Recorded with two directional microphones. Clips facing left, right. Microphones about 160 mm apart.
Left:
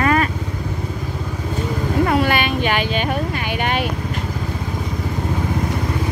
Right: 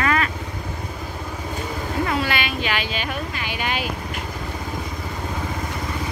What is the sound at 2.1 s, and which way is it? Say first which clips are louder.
Vehicle: left 6 dB; 45° left (ahead or behind).